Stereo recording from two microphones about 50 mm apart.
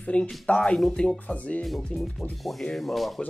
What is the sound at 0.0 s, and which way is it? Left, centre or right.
Speech, left.